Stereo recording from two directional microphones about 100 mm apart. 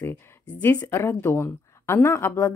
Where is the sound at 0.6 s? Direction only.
20° left (ahead or behind).